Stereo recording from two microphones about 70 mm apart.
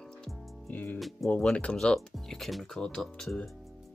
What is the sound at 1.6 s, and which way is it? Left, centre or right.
Speech, centre.